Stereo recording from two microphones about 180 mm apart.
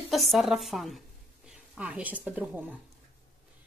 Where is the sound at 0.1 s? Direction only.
Centre (ahead or behind).